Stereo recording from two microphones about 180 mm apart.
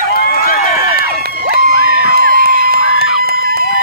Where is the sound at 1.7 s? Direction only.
90° left.